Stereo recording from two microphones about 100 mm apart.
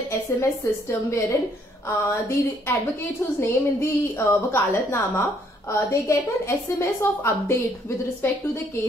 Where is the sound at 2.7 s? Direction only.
25° left (ahead or behind).